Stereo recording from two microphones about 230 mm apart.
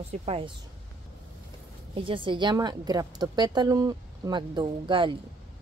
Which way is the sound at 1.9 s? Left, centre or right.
Right.